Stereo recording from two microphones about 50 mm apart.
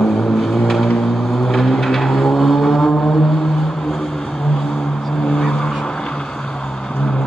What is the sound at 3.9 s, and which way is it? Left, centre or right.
Vehicle, centre.